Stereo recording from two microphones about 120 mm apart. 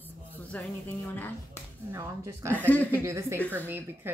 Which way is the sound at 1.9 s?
20° right (ahead or behind).